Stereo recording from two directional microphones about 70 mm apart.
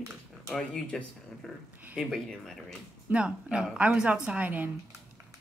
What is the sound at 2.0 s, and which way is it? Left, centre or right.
Speech, centre.